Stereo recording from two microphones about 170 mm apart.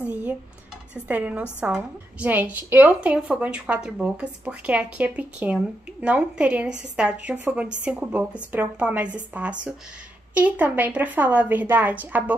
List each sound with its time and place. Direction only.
0.1 s dishes: 10° right (ahead or behind)
1.0 s a woman's voice: 10° right (ahead or behind)